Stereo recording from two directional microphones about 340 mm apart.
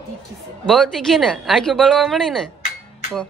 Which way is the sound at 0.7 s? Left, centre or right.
Centre.